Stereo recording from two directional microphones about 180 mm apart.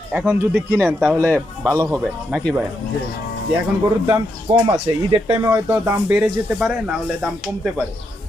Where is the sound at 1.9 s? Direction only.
5° right (ahead or behind).